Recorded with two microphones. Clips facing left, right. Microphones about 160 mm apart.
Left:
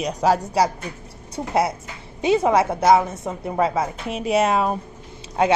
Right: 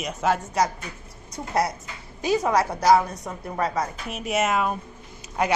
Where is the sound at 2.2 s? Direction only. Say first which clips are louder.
Left 4 dB; 25° left (ahead or behind).